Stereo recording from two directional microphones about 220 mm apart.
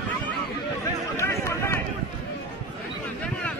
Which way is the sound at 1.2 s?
10° left (ahead or behind).